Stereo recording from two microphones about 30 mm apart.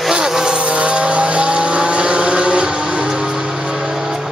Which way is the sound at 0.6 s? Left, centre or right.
Right.